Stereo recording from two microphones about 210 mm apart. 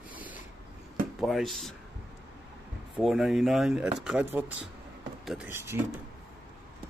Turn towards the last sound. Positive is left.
turn(degrees=-10)  # may be behind; listen again after turning